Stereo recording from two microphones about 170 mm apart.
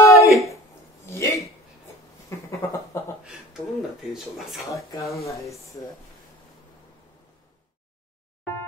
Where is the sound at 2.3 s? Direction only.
15° left (ahead or behind).